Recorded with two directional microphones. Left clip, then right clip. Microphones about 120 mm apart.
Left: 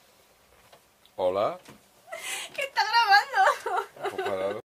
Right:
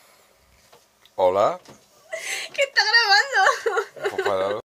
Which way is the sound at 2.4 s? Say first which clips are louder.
Right 7 dB; 50° left (ahead or behind).